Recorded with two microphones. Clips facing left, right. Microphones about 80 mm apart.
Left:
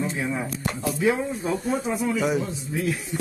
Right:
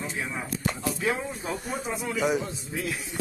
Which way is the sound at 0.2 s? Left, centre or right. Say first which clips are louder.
Left 6 dB; centre.